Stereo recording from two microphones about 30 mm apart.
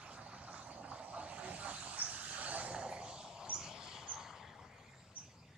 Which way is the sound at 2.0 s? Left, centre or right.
Right.